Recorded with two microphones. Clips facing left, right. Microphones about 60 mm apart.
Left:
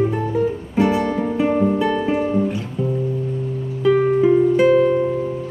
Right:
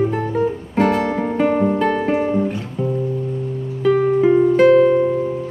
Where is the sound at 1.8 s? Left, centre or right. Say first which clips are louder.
Right 1 dB; right.